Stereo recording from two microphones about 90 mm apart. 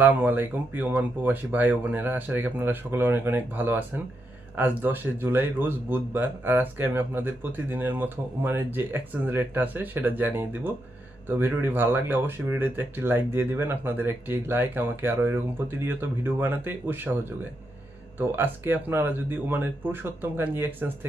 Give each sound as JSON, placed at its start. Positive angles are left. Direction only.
{"t": 0.0, "sound": "speech", "side_deg": -20}
{"t": 18.3, "sound": "speech", "side_deg": -25}